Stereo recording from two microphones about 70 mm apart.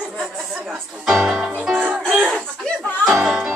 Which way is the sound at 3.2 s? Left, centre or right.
Centre.